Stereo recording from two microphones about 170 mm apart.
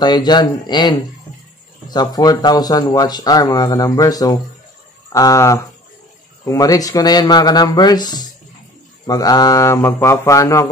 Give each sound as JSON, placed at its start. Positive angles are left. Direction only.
{"t": 0.0, "sound": "speech", "side_deg": 25}